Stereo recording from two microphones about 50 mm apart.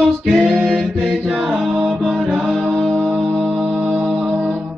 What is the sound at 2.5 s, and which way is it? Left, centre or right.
Music, centre.